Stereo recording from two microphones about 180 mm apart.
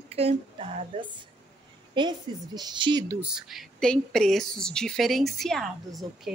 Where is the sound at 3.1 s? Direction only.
5° right (ahead or behind).